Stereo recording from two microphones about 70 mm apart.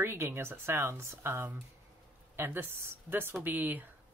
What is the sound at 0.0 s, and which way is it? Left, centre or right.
Speech, right.